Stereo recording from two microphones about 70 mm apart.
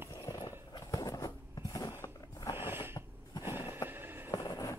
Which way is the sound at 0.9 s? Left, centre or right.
Left.